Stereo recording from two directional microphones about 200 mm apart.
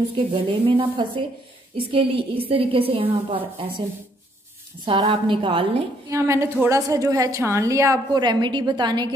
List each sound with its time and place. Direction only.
0.3 s a woman's voice: 25° right (ahead or behind)
4.8 s a woman's voice: 25° right (ahead or behind)
6.0 s a woman's voice: 15° right (ahead or behind)